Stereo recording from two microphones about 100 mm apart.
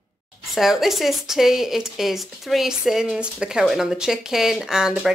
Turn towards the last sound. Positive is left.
turn(degrees=-5)  # may be behind; listen again after turning